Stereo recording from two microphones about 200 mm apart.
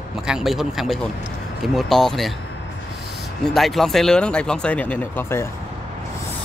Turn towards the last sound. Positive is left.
turn(degrees=10)  # may be behind; listen again after turning